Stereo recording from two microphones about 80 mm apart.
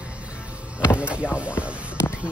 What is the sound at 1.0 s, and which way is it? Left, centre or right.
Speech, centre.